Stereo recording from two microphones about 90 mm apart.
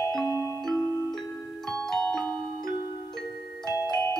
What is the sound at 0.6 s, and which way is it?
Music, 5° left (ahead or behind).